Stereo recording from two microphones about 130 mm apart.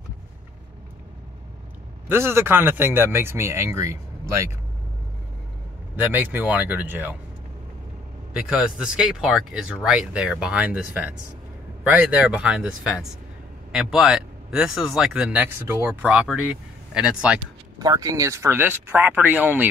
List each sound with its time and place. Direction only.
2.0 s a man's voice: 20° right (ahead or behind)
5.9 s speech: 15° right (ahead or behind)
8.3 s a man's voice: 5° right (ahead or behind)
17.7 s speech: 30° right (ahead or behind); by 19.7 s 10° right (ahead or behind)